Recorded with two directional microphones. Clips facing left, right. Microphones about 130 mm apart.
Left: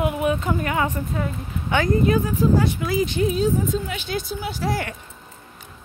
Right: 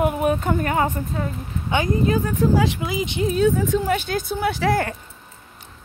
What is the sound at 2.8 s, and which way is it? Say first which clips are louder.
Speech: left 2 dB; 20° right (ahead or behind).